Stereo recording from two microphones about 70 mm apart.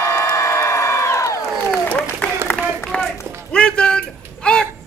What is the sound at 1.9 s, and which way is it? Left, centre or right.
Applause, centre.